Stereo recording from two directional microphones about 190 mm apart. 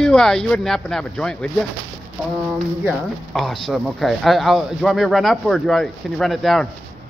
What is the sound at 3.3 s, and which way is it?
Speech, centre (ahead or behind).